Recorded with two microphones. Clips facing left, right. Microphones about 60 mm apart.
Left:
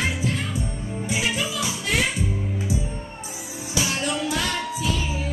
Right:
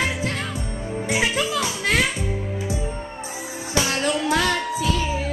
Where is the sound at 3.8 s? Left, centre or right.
Right.